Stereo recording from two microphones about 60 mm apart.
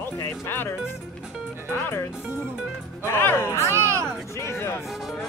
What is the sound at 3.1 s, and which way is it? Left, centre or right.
Music, left.